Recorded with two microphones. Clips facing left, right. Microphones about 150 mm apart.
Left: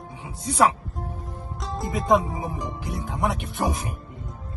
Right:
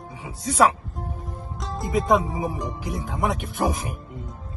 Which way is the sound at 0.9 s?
Centre (ahead or behind).